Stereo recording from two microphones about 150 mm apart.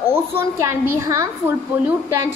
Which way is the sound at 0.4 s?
15° right (ahead or behind).